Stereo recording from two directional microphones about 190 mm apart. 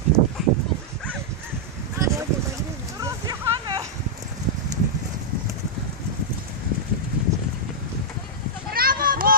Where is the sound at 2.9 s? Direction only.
20° right (ahead or behind).